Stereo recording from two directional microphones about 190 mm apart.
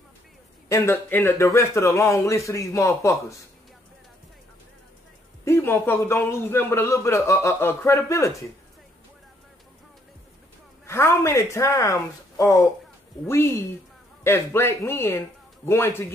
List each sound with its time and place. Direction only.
0.7 s a man's voice: 15° left (ahead or behind)
5.4 s a man's voice: 10° left (ahead or behind)
10.9 s a man's voice: 15° left (ahead or behind)